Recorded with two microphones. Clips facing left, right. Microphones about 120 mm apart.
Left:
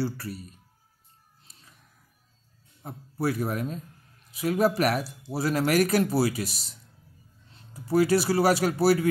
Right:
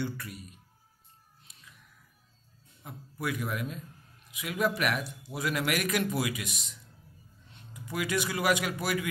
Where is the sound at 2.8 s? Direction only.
35° left (ahead or behind).